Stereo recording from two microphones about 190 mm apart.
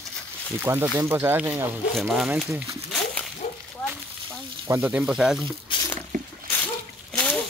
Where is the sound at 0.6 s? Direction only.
10° right (ahead or behind).